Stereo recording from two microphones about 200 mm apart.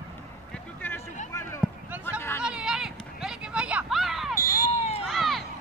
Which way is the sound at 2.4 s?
5° right (ahead or behind).